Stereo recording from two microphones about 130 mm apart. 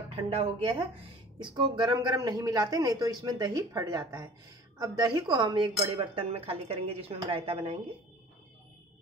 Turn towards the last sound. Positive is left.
turn(degrees=-45)  # may be behind; listen again after turning